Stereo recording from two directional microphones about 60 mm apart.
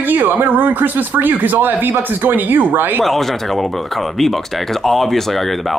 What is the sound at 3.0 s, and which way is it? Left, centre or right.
Speech, centre.